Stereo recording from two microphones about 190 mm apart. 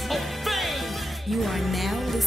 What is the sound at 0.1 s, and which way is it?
Music, centre (ahead or behind).